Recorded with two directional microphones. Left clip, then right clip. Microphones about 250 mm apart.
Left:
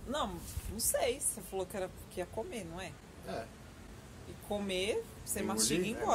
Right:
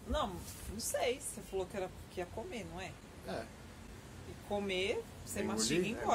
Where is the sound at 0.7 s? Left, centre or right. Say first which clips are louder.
Left 2 dB; left.